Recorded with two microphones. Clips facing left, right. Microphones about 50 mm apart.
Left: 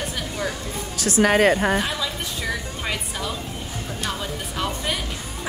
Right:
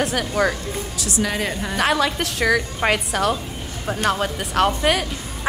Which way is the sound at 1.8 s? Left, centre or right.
Right.